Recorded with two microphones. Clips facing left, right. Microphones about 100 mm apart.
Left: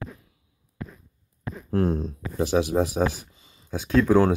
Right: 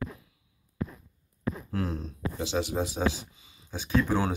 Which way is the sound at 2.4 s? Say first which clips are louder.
Left 8 dB; 65° left (ahead or behind).